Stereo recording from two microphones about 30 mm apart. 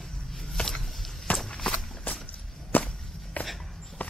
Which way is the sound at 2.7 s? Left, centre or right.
Left.